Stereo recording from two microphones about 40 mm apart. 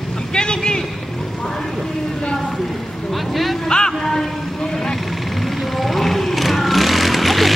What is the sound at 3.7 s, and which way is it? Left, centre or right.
Music, centre.